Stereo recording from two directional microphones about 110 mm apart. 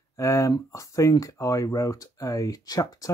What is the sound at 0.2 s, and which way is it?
Speech, 30° left (ahead or behind).